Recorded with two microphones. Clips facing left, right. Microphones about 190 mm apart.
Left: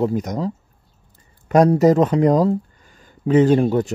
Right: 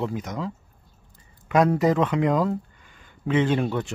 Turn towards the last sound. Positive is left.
turn(degrees=40)  # may be behind; listen again after turning